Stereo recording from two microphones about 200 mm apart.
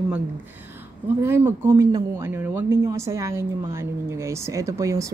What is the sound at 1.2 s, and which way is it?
Speech, 10° right (ahead or behind).